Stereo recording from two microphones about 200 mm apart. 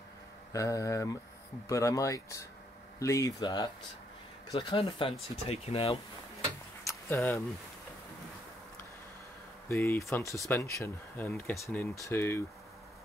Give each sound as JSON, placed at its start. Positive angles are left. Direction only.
{"t": 0.5, "sound": "speech", "side_deg": 15}
{"t": 6.9, "sound": "a sound", "side_deg": 10}
{"t": 9.7, "sound": "speech", "side_deg": 15}